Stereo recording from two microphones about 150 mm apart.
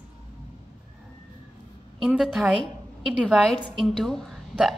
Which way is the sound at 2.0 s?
Centre (ahead or behind).